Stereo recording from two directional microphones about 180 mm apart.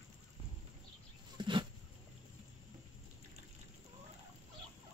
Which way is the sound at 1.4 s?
25° right (ahead or behind).